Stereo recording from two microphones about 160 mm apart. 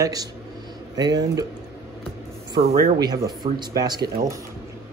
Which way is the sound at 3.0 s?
25° right (ahead or behind).